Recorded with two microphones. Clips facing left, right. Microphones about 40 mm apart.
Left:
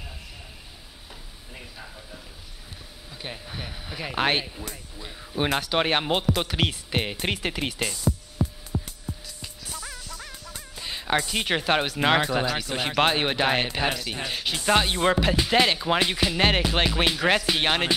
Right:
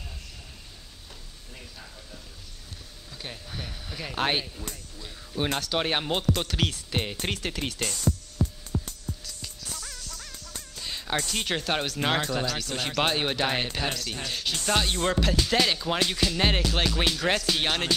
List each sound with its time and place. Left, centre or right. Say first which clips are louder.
3.2 s speech: left 2 dB; centre
8.8 s music: left 1 dB; centre